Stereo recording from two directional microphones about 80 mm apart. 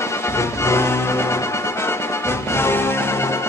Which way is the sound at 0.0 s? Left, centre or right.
Left.